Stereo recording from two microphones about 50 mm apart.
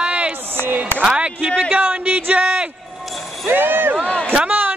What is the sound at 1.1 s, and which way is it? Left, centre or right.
Speech, right.